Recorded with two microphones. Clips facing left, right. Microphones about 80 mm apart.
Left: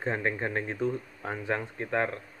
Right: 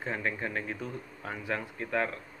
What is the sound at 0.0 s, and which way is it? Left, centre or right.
Speech, left.